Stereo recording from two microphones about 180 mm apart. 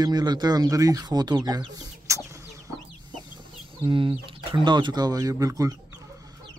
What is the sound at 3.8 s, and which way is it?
Speech, 30° right (ahead or behind).